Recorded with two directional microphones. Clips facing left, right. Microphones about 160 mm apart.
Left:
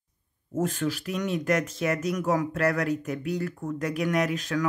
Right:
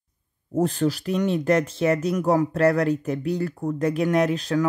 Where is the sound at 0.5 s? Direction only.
30° right (ahead or behind).